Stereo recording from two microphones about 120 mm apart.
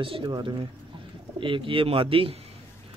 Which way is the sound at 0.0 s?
45° right (ahead or behind).